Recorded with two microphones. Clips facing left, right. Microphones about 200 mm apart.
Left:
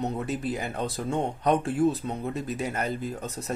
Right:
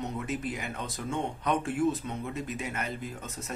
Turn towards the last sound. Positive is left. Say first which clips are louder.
# left 6 dB
turn(degrees=35)  # may be behind; listen again after turning